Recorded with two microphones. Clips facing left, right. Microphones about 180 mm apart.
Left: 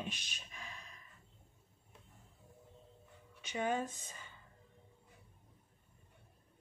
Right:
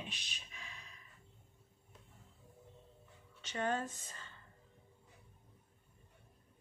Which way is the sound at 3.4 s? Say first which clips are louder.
Left 1 dB; 10° left (ahead or behind).